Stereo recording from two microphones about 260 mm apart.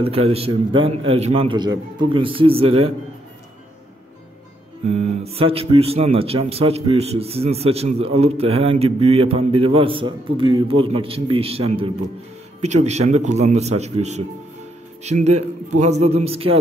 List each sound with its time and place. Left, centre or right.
0.0 s speech: right
4.8 s speech: right